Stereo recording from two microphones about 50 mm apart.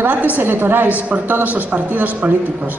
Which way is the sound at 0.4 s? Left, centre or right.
Right.